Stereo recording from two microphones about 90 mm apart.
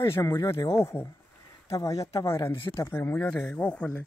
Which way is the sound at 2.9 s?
20° left (ahead or behind).